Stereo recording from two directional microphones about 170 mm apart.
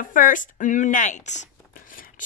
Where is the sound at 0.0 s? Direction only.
50° left (ahead or behind).